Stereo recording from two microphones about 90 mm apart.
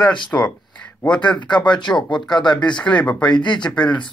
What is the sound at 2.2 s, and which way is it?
Speech, 55° left (ahead or behind).